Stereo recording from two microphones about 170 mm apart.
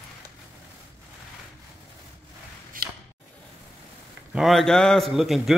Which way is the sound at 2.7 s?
55° right (ahead or behind).